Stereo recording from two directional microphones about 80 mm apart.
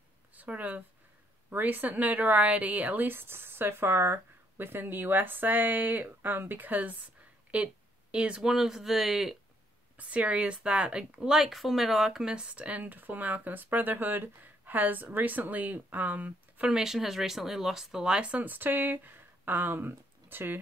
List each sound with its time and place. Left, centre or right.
0.4 s speech: centre
9.9 s speech: centre
16.7 s speech: centre; by 20.5 s right